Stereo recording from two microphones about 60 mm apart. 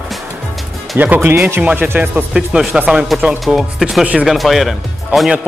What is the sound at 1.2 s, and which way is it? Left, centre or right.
Speech, right.